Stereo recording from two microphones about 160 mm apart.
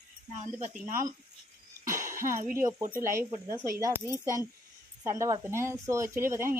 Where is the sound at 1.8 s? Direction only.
20° right (ahead or behind).